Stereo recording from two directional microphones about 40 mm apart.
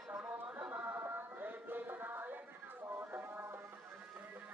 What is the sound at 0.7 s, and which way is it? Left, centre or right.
Music, right.